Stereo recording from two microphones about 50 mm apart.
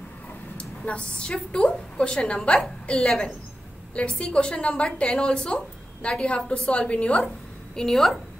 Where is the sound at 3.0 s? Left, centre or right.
Centre.